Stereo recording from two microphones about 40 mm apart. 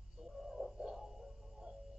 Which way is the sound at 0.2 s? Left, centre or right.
Centre.